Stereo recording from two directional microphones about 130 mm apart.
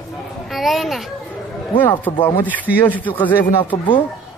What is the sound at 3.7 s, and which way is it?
Speech, 35° left (ahead or behind).